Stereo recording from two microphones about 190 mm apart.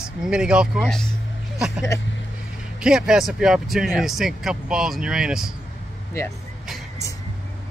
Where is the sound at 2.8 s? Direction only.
5° right (ahead or behind).